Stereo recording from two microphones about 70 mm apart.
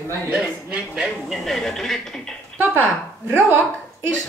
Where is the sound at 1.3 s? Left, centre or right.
Centre.